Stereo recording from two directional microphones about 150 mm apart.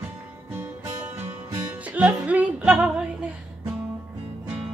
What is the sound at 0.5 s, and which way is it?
Music, 15° right (ahead or behind).